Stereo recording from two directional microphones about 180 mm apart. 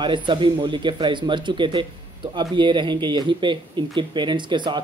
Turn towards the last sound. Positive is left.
turn(degrees=-25)  # may be behind; listen again after turning